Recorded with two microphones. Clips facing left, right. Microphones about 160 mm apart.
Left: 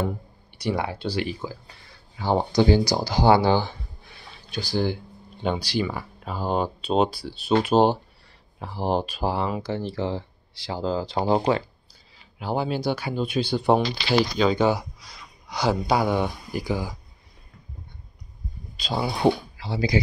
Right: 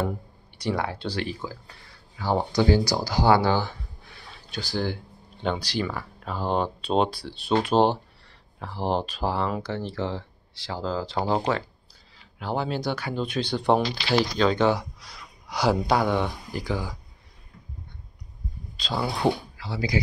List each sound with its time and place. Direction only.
0.6 s speech: 15° left (ahead or behind)
2.1 s speech: 20° left (ahead or behind)
15.0 s speech: centre (ahead or behind)
18.8 s speech: 10° left (ahead or behind)
19.6 s speech: 25° left (ahead or behind)